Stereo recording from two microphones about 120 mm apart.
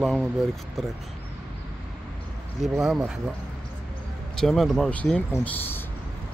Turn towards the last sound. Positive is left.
turn(degrees=15)  # may be behind; listen again after turning